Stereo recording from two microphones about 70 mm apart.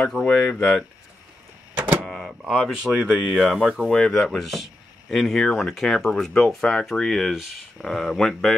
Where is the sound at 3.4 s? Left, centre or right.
Centre.